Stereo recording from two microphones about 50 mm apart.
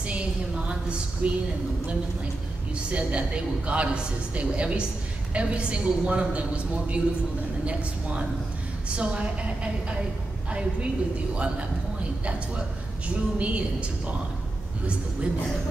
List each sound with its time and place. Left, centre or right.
0.7 s a woman's voice: right
2.9 s a woman's voice: right
13.1 s a woman's voice: right